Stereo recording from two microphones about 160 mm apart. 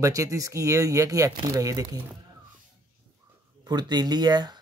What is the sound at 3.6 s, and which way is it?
Speech, 25° right (ahead or behind).